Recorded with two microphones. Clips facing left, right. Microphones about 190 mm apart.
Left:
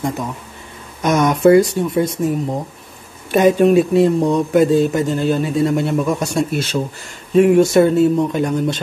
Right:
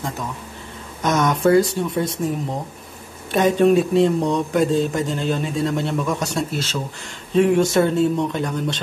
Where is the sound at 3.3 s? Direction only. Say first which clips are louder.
Left 4 dB; 10° left (ahead or behind).